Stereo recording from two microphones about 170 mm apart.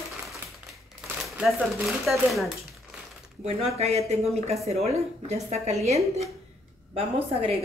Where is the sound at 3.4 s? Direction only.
35° right (ahead or behind).